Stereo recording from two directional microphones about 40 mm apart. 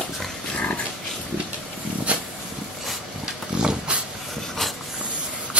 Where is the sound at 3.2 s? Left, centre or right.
Right.